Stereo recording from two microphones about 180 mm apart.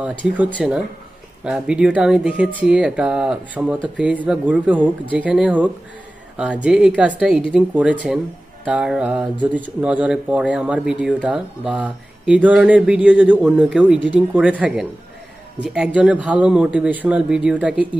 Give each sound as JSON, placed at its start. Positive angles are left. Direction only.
{"t": 0.0, "sound": "speech", "side_deg": -10}